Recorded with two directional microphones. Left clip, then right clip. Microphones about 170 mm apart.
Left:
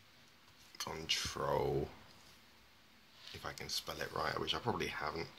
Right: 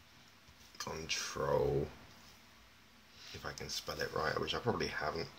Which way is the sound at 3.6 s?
20° left (ahead or behind).